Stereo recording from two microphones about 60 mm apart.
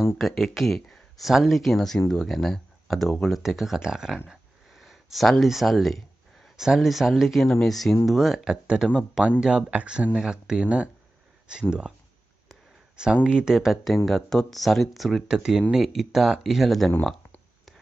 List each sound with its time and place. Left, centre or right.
0.2 s speech: centre
3.4 s speech: centre
4.3 s a sound: centre
5.4 s speech: centre
12.9 s speech: centre
15.2 s speech: centre